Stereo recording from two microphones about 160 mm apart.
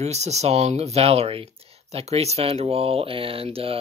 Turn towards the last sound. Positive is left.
turn(degrees=-35)  # may be behind; listen again after turning